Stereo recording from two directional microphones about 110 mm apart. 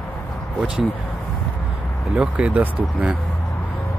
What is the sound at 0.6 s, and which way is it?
Speech, 5° right (ahead or behind).